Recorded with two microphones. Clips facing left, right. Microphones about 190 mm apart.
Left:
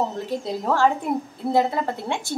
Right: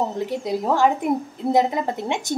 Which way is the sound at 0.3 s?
15° right (ahead or behind).